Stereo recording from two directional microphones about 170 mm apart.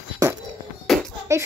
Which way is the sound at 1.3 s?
15° right (ahead or behind).